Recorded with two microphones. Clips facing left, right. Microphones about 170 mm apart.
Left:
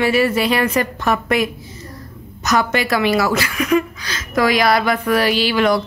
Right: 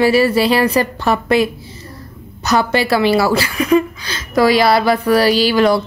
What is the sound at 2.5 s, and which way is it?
A woman's voice, 30° right (ahead or behind).